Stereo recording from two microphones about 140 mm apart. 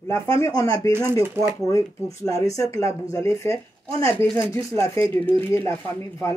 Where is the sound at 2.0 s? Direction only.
25° left (ahead or behind).